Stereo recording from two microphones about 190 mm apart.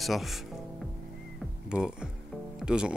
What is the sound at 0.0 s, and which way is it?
Speech, centre (ahead or behind).